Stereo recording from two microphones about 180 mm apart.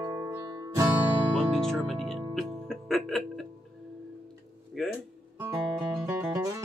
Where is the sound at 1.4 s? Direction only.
Centre (ahead or behind).